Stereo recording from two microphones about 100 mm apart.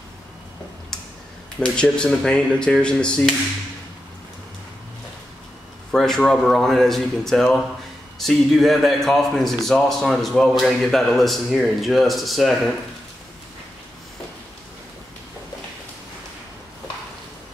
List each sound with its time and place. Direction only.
1.6 s speech: 10° left (ahead or behind)
5.9 s a man's voice: 5° left (ahead or behind)